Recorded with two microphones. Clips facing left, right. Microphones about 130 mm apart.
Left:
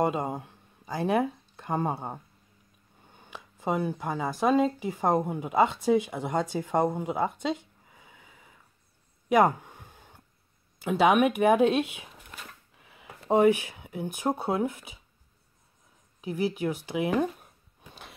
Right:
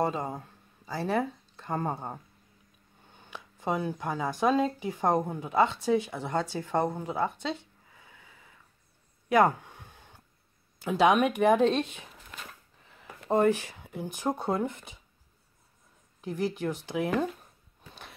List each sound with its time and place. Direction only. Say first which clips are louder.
0.0 s speech: left 2 dB; 15° left (ahead or behind)
7.4 s a sound: left 4 dB; 15° left (ahead or behind)
10.8 s speech: left 1 dB; 5° left (ahead or behind)
12.7 s a sound: even; 5° left (ahead or behind)
13.3 s speech: left 3 dB; 10° left (ahead or behind)
16.2 s speech: left 2 dB; 5° left (ahead or behind)